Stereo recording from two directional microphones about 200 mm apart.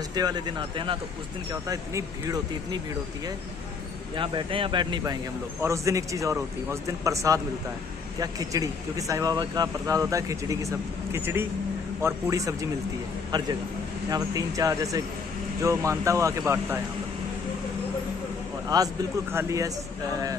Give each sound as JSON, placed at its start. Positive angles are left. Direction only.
{"t": 0.1, "sound": "a man's voice", "side_deg": -20}
{"t": 4.2, "sound": "a man's voice", "side_deg": -25}
{"t": 19.3, "sound": "speech", "side_deg": -15}